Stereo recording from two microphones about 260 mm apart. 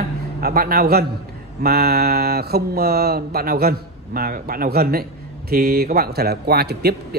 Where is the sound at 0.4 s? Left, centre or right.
Right.